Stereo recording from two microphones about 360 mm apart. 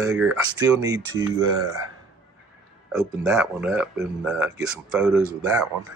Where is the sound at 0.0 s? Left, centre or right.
Centre.